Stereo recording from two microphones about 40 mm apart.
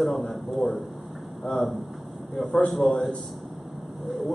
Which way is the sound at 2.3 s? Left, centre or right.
Centre.